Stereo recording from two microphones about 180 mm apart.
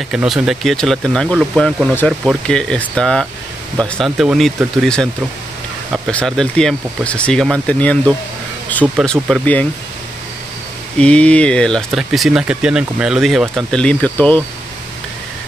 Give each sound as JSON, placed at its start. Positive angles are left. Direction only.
{"t": 0.1, "sound": "speech", "side_deg": -5}
{"t": 11.0, "sound": "speech", "side_deg": 5}